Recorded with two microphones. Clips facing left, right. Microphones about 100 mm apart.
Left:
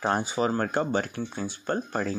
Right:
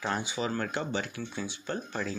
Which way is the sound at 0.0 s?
45° left (ahead or behind).